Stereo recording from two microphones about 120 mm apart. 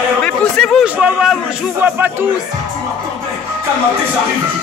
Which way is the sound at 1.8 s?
15° right (ahead or behind).